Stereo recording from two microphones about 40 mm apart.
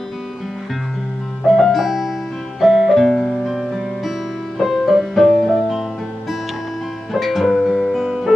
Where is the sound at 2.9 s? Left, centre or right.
Centre.